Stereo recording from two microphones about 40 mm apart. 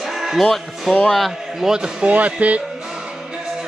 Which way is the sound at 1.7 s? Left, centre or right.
Centre.